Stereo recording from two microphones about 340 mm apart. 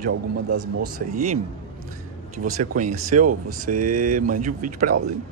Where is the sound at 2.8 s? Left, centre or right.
Right.